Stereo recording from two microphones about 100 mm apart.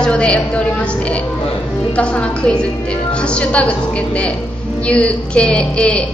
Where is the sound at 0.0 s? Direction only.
10° left (ahead or behind).